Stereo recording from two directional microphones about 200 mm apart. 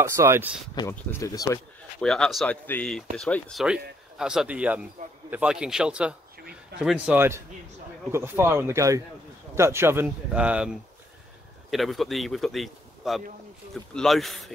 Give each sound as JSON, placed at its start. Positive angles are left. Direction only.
{"t": 0.0, "sound": "speech", "side_deg": -15}
{"t": 0.7, "sound": "speech", "side_deg": 15}
{"t": 2.0, "sound": "speech", "side_deg": 5}